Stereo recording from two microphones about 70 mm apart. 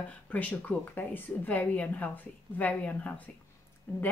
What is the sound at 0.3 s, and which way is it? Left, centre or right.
A woman's voice, left.